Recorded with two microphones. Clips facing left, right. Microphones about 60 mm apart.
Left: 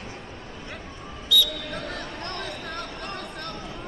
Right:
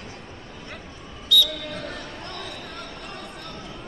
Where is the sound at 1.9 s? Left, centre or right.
Left.